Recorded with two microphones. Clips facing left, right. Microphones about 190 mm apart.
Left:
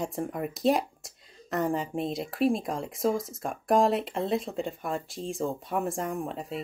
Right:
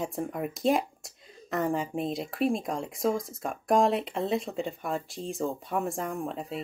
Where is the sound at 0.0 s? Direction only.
Centre (ahead or behind).